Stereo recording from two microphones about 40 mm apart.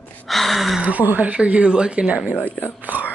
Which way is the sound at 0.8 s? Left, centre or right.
Right.